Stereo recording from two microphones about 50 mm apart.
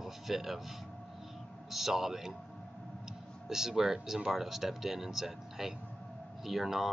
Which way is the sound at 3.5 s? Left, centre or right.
Centre.